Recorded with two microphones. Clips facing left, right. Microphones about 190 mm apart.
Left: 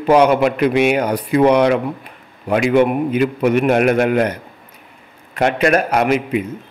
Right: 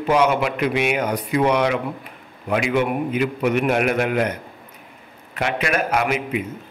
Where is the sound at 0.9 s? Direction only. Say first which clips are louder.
Left 5 dB; 35° left (ahead or behind).